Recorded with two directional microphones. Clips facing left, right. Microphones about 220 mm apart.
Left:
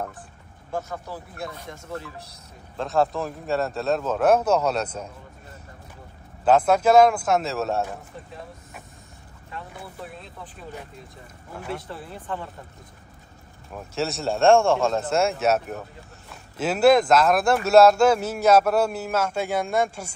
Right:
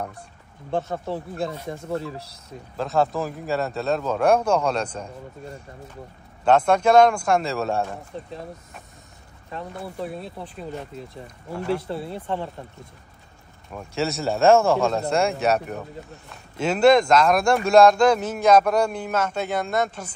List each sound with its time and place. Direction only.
0.7 s speech: 25° right (ahead or behind)
2.8 s speech: centre (ahead or behind)
6.4 s speech: 5° left (ahead or behind)
11.5 s speech: 5° left (ahead or behind)
12.1 s speech: 25° right (ahead or behind)
13.7 s speech: centre (ahead or behind)